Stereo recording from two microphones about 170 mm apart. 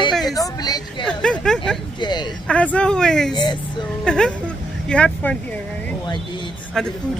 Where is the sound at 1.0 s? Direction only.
5° left (ahead or behind).